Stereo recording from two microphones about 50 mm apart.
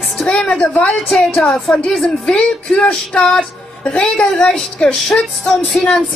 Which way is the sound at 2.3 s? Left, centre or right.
Left.